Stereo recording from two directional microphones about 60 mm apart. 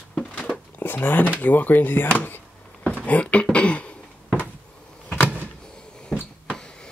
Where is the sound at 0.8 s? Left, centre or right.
Left.